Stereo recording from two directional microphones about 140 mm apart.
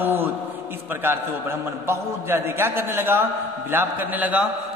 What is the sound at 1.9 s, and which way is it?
A man's voice, 15° right (ahead or behind).